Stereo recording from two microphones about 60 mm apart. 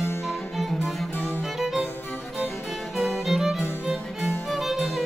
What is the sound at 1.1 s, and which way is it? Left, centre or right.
Music, left.